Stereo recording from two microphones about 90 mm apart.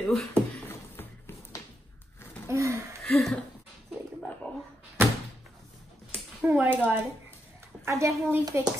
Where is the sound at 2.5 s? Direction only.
30° right (ahead or behind).